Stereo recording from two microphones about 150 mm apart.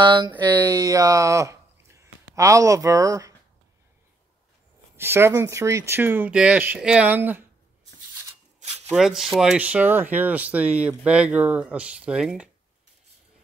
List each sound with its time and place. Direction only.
0.0 s speech: 30° right (ahead or behind)
4.9 s speech: 15° right (ahead or behind)
8.5 s shuffling cards: 45° right (ahead or behind)
8.9 s speech: 5° right (ahead or behind)